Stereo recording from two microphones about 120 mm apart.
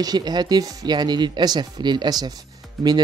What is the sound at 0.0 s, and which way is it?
Speech, 35° right (ahead or behind).